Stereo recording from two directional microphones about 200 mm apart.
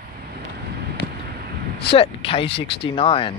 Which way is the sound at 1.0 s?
60° left (ahead or behind).